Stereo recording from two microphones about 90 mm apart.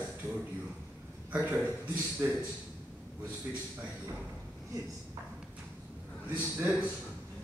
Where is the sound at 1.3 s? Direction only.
15° right (ahead or behind).